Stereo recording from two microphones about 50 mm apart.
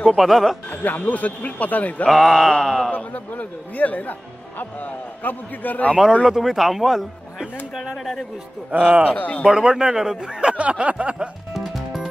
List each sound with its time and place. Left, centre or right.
0.0 s speech: centre
0.7 s speech: left
2.0 s speech: centre
2.9 s speech: left
6.2 s speech: centre
8.0 s speech: centre
9.0 s speech: left
9.5 s speech: centre
10.6 s a sound: right
11.5 s music: centre